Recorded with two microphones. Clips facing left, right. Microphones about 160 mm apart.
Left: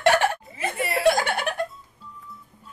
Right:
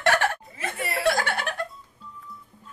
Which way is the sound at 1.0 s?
15° left (ahead or behind).